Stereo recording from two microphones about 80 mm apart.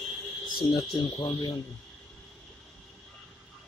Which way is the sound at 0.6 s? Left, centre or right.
Left.